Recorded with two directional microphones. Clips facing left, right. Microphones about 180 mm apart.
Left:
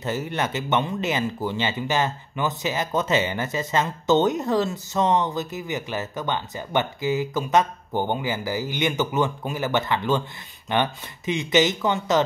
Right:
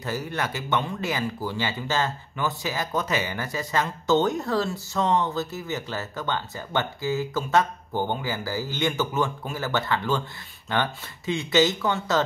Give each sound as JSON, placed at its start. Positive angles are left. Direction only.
{"t": 0.0, "sound": "speech", "side_deg": 20}